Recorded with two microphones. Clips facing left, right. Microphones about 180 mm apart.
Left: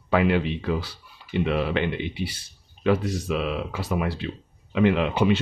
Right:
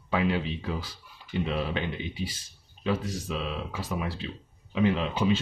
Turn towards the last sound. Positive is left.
turn(degrees=65)  # may be behind; listen again after turning